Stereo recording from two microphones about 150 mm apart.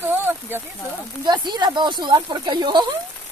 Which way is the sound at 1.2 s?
30° right (ahead or behind).